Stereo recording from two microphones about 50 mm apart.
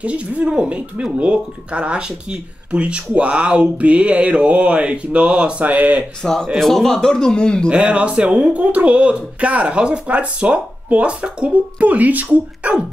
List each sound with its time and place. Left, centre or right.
0.0 s speech: right
6.2 s a man's voice: centre
7.7 s speech: right